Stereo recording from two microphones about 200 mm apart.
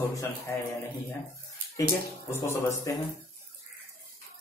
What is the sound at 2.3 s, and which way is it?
Speech, 15° left (ahead or behind).